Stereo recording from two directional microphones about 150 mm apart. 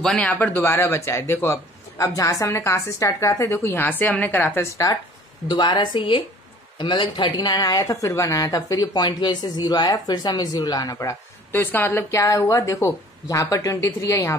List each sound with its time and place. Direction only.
0.0 s a man's voice: 5° left (ahead or behind)
5.5 s a woman's voice: 30° left (ahead or behind)